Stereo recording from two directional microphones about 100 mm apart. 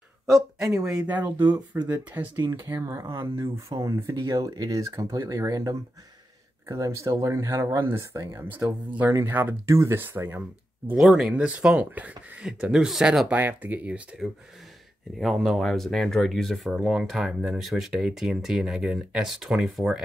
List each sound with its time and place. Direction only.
0.3 s speech: centre (ahead or behind)
1.0 s speech: 15° right (ahead or behind); by 5.8 s 35° right (ahead or behind)
6.8 s speech: 30° right (ahead or behind)
8.2 s speech: 35° right (ahead or behind)
8.5 s speech: 20° right (ahead or behind)
11.0 s speech: 5° right (ahead or behind)
13.3 s speech: 15° right (ahead or behind)
15.1 s speech: centre (ahead or behind)